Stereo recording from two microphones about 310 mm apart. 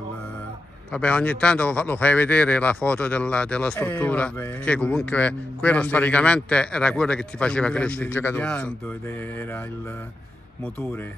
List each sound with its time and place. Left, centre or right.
0.9 s a man's voice: centre